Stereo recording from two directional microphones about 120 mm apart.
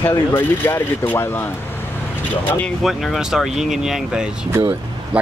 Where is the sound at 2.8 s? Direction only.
Centre (ahead or behind).